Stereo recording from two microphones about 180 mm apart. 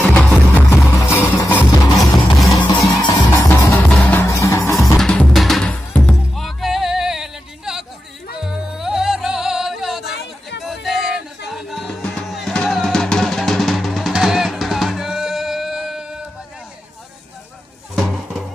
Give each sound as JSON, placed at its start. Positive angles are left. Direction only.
{"t": 0.1, "sound": "music", "side_deg": 10}
{"t": 1.9, "sound": "music", "side_deg": 0}
{"t": 3.0, "sound": "music", "side_deg": 20}
{"t": 4.9, "sound": "music", "side_deg": 5}
{"t": 17.9, "sound": "music", "side_deg": 0}